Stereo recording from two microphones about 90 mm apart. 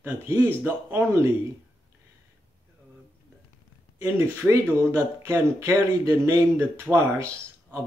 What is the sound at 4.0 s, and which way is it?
Speech, 30° right (ahead or behind).